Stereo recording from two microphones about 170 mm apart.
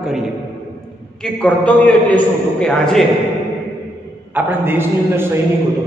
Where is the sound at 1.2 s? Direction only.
5° left (ahead or behind).